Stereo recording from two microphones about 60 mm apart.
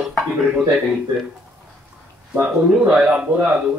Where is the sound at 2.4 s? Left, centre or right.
Centre.